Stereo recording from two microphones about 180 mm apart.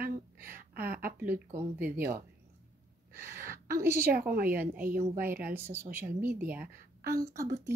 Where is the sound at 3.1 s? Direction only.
60° right (ahead or behind).